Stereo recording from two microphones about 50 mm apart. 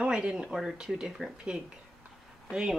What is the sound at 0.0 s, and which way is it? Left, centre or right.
Speech, centre.